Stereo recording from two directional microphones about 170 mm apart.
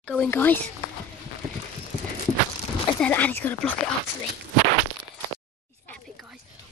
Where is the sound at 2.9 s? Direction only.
10° left (ahead or behind).